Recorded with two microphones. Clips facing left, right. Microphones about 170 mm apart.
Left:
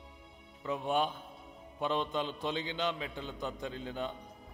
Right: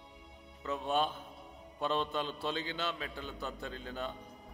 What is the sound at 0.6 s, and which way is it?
A man's voice, 15° left (ahead or behind).